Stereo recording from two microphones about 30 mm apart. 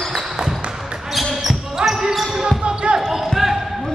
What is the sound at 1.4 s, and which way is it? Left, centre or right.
Basketball bounce, centre.